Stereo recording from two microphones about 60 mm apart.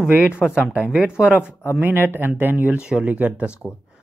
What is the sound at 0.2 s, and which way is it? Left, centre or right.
Speech, centre.